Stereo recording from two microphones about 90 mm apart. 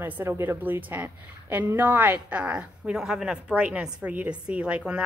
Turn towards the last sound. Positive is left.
turn(degrees=-15)  # may be behind; listen again after turning